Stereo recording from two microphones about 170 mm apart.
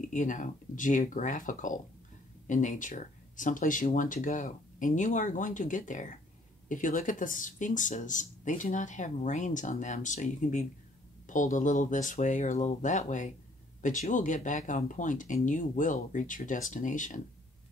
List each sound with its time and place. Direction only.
0.1 s speech: 50° left (ahead or behind)